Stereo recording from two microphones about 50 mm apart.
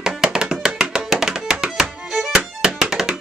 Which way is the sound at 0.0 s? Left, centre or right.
Centre.